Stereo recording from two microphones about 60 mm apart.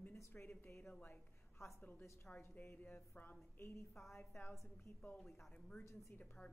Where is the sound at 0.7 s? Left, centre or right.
Left.